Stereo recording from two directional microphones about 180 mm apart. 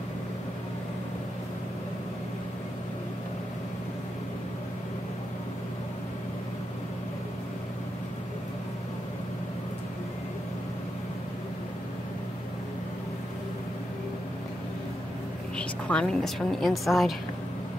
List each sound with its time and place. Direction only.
15.5 s a woman's voice: 5° left (ahead or behind)